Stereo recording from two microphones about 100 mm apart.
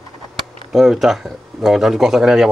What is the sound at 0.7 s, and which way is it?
Speech, centre (ahead or behind).